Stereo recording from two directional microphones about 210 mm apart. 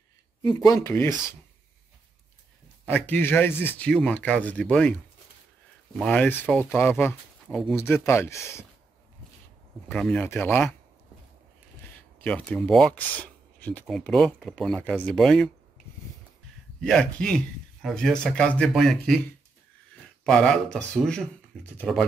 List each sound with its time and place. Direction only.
0.4 s speech: 20° left (ahead or behind)
2.9 s speech: 10° left (ahead or behind)
9.8 s speech: 5° left (ahead or behind)
12.2 s speech: 5° left (ahead or behind)
16.8 s speech: 5° left (ahead or behind)
20.2 s speech: 5° left (ahead or behind)